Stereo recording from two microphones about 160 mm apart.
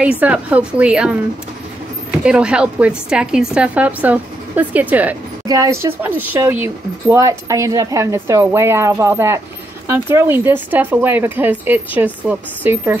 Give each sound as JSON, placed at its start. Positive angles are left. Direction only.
{"t": 0.0, "sound": "speech", "side_deg": -10}